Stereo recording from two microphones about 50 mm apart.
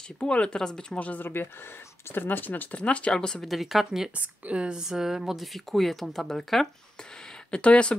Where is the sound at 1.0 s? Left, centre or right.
Left.